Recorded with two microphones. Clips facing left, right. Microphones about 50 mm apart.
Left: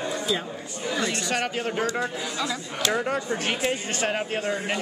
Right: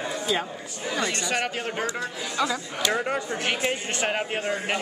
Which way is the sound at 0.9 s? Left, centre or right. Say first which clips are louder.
Even; centre.